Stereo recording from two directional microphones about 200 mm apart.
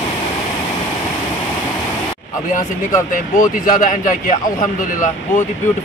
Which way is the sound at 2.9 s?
40° left (ahead or behind).